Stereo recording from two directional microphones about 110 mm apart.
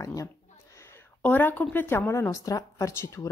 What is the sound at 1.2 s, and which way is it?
Speech, 15° left (ahead or behind).